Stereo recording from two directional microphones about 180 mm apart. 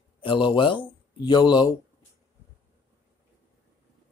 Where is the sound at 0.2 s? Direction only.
25° left (ahead or behind).